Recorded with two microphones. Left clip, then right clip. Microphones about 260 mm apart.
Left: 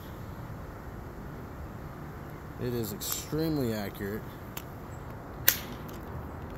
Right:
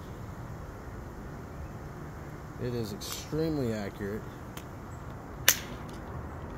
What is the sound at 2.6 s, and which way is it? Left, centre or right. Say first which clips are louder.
Speech: left 1 dB; centre.